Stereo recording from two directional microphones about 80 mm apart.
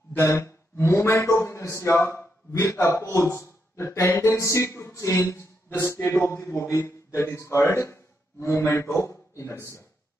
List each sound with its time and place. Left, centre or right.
0.2 s a man's voice: left